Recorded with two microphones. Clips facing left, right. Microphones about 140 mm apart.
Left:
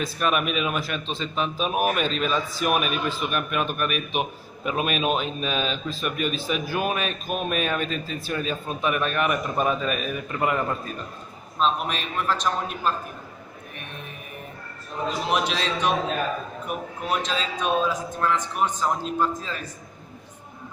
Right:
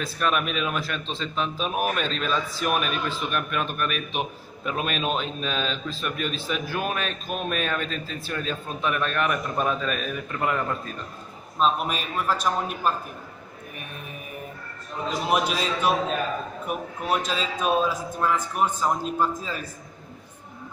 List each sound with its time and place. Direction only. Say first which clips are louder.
0.0 s a man's voice: left 1 dB; 5° left (ahead or behind)
11.6 s a man's voice: right 1 dB; 5° right (ahead or behind)
15.3 s a man's voice: right 2 dB; 10° right (ahead or behind)